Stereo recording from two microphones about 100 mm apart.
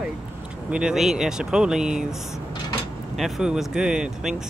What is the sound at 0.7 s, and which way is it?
Speech, 10° right (ahead or behind).